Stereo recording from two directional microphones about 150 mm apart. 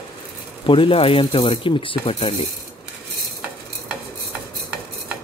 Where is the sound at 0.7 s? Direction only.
35° left (ahead or behind).